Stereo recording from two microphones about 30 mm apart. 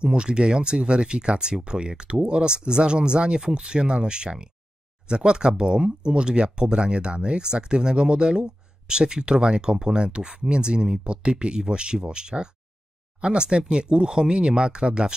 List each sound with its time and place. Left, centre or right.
0.0 s speech: right